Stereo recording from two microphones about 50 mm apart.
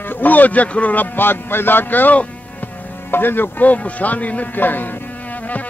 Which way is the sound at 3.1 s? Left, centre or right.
Left.